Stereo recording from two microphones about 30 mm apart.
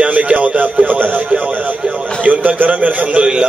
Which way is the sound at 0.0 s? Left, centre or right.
Right.